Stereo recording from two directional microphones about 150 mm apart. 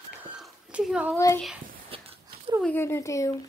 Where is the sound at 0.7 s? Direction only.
10° right (ahead or behind).